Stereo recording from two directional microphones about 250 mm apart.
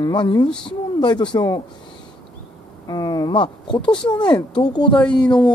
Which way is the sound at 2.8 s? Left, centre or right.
Centre.